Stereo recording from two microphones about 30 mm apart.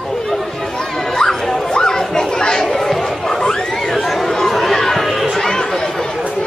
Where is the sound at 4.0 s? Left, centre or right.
Centre.